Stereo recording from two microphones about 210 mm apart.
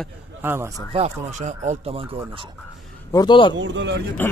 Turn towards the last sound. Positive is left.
turn(degrees=-60)  # may be behind; listen again after turning